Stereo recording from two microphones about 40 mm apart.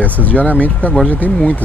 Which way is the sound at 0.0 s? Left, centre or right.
Left.